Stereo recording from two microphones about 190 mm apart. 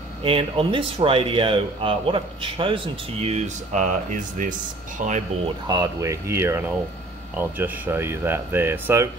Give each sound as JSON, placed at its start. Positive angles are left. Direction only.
{"t": 0.2, "sound": "speech", "side_deg": -30}
{"t": 5.7, "sound": "speech", "side_deg": -20}